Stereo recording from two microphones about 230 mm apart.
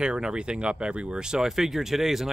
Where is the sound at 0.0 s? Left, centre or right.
Centre.